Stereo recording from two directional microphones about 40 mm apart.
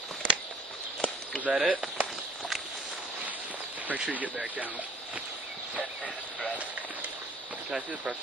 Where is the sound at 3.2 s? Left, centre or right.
Right.